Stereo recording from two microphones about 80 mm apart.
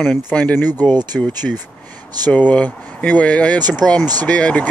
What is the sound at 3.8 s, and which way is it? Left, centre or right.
Speech, centre.